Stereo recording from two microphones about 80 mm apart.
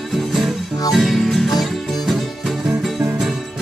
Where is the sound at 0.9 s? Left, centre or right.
Centre.